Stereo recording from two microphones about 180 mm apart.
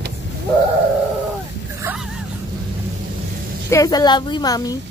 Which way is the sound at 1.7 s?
5° right (ahead or behind).